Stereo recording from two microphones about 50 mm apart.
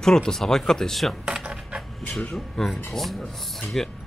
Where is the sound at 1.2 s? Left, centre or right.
Centre.